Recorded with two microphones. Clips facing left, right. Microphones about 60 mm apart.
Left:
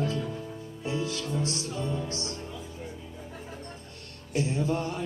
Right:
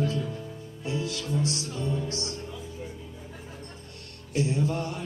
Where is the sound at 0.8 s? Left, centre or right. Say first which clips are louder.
Even; left.